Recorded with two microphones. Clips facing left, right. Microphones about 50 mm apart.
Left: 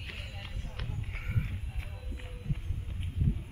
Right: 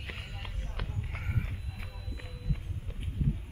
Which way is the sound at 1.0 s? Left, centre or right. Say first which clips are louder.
Left 1 dB; centre.